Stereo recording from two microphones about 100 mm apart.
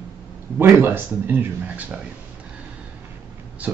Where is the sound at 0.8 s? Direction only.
20° right (ahead or behind).